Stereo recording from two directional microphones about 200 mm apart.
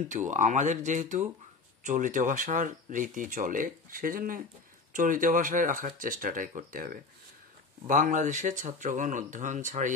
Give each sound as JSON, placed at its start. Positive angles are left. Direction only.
{"t": 0.1, "sound": "speech", "side_deg": -35}